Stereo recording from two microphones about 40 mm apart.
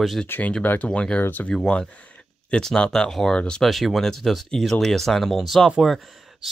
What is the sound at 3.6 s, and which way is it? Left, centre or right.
Speech, centre.